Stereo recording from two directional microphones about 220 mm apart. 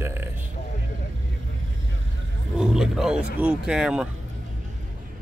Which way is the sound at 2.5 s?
Centre (ahead or behind).